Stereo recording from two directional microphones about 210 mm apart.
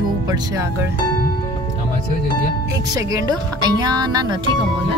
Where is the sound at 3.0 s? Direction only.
15° right (ahead or behind).